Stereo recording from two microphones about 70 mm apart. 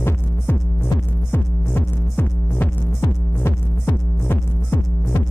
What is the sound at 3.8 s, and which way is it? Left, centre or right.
Music, left.